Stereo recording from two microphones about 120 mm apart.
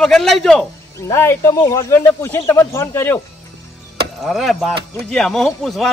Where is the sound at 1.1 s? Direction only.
25° left (ahead or behind).